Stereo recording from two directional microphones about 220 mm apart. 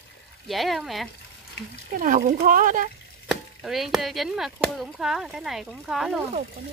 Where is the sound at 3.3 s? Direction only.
Centre (ahead or behind).